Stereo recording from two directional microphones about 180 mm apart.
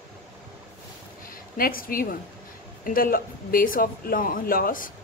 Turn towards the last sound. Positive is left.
turn(degrees=50)  # may be behind; listen again after turning